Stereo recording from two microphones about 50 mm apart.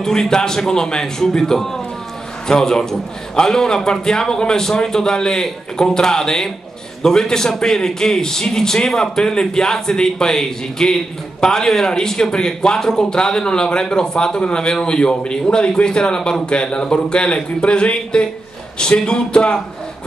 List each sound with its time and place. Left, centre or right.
0.0 s a man's voice: centre